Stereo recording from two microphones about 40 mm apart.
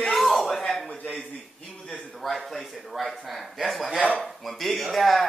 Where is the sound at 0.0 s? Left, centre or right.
Centre.